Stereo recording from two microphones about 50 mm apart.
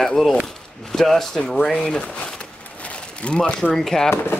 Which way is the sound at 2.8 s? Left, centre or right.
Left.